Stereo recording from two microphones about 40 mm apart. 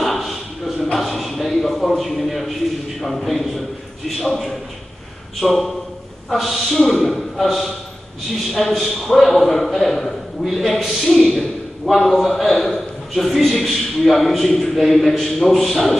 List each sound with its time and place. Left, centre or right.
0.0 s a sound: centre
3.0 s a man's voice: centre
5.4 s a man's voice: centre